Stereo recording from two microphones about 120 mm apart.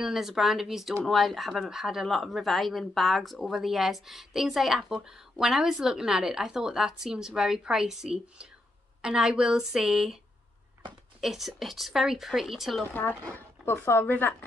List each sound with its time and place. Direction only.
0.0 s speech: 5° right (ahead or behind)
11.1 s speech: centre (ahead or behind)
12.9 s speech: 15° left (ahead or behind)